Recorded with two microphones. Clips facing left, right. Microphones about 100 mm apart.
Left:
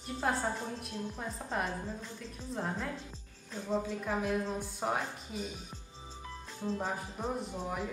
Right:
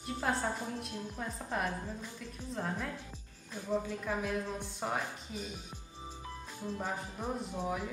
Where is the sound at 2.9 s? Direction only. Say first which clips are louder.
Left 1 dB; 15° right (ahead or behind).